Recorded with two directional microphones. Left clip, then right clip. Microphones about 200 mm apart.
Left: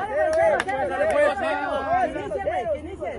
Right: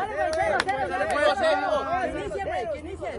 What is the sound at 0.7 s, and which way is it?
Speech, 25° left (ahead or behind).